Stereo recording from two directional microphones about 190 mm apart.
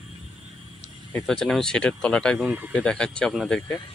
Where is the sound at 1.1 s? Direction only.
5° left (ahead or behind).